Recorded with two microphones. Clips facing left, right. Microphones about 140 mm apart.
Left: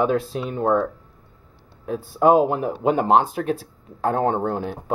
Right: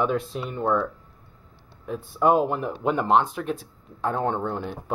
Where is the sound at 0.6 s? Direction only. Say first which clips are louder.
Left 4 dB; 40° left (ahead or behind).